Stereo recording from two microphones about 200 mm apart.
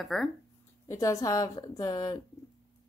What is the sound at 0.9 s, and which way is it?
Speech, 15° left (ahead or behind).